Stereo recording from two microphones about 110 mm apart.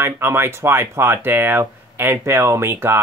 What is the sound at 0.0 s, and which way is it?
Speech, 20° right (ahead or behind).